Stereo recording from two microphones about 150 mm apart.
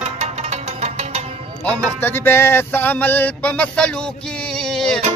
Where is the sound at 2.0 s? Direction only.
15° left (ahead or behind).